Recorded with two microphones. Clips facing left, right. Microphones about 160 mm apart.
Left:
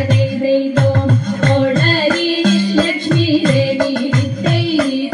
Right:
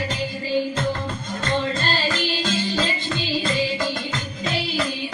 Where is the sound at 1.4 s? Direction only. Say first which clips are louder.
Left 9 dB; 55° left (ahead or behind).